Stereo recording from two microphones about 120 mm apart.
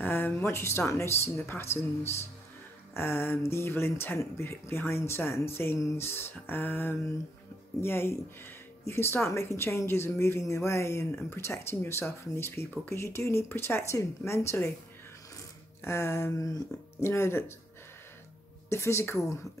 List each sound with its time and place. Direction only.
0.0 s speech: 15° left (ahead or behind)
15.8 s speech: 20° left (ahead or behind)
18.7 s speech: 25° left (ahead or behind)